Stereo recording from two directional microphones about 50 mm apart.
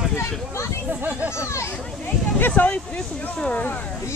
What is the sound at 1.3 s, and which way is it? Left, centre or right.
Speech, left.